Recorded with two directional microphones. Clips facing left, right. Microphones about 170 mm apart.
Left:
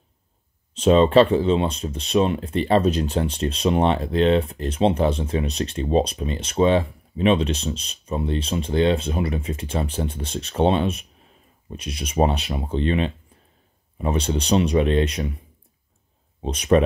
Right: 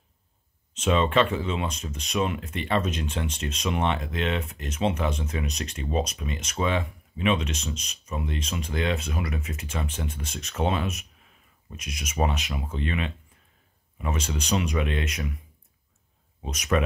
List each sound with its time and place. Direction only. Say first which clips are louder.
0.7 s speech: left 8 dB; 35° left (ahead or behind)
16.4 s speech: left 8 dB; 30° left (ahead or behind)